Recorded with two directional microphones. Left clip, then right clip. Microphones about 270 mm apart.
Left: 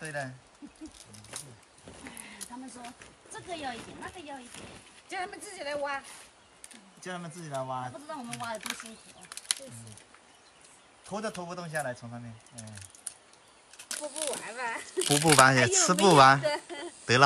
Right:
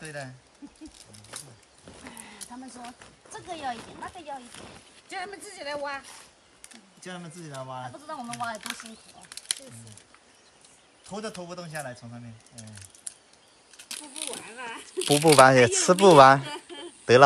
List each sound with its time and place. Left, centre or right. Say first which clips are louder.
0.0 s speech: left 2 dB; centre
2.0 s a sound: right 1 dB; centre
3.3 s speech: right 3 dB; centre
5.1 s speech: right 1 dB; centre
11.1 s speech: left 1 dB; centre
14.4 s speech: left 3 dB; centre
15.0 s speech: right 4 dB; centre
15.3 s speech: right 5 dB; centre